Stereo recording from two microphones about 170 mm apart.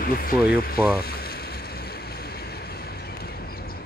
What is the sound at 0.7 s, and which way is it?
Speech, 10° right (ahead or behind).